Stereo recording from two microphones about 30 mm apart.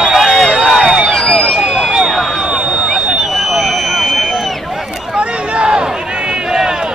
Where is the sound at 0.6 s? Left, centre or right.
Centre.